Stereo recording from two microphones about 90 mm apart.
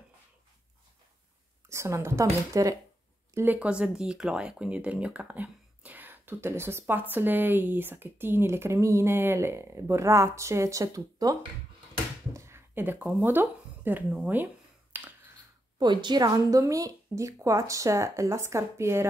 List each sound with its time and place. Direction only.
1.7 s speech: 30° right (ahead or behind)
3.5 s speech: 10° right (ahead or behind); by 11.3 s 40° right (ahead or behind)
12.4 s a sound: 30° right (ahead or behind)
13.2 s speech: 25° right (ahead or behind)
14.1 s a sound: 20° right (ahead or behind)
15.8 s speech: 55° right (ahead or behind); by 19.0 s 30° right (ahead or behind)